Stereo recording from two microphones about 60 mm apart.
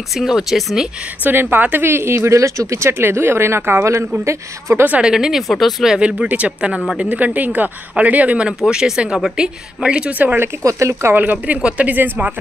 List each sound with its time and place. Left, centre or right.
0.2 s speech: centre
1.2 s speech: right
4.2 s speech: right
5.0 s speech: centre
5.9 s speech: centre
8.6 s speech: centre
9.8 s speech: centre
10.6 s speech: right
11.1 s speech: right